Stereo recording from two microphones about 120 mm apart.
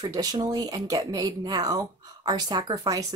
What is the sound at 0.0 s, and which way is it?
Speech, 30° right (ahead or behind).